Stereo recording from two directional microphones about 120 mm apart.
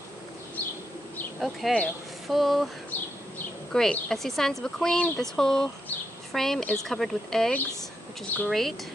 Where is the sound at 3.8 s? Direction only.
5° left (ahead or behind).